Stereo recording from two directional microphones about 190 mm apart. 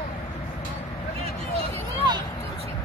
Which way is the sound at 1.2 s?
25° right (ahead or behind).